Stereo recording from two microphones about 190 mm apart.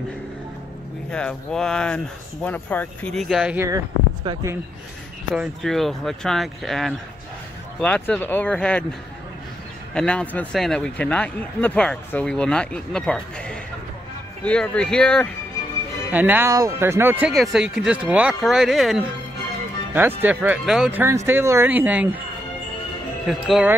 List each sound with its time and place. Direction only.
1.1 s speech: 5° left (ahead or behind)
3.6 s speech: 20° right (ahead or behind)
5.3 s speech: centre (ahead or behind)
9.9 s speech: 5° left (ahead or behind)
16.1 s speech: 10° right (ahead or behind)
19.9 s speech: 10° right (ahead or behind)
23.2 s speech: centre (ahead or behind)